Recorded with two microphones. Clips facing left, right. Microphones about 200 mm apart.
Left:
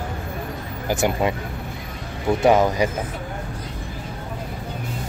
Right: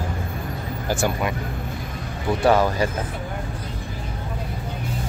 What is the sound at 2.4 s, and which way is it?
Speech, 20° left (ahead or behind).